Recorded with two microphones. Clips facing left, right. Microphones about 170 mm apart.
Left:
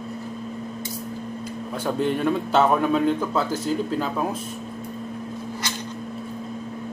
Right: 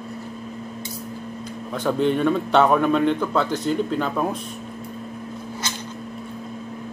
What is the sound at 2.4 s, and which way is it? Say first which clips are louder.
A man's voice: right 2 dB; 65° right (ahead or behind).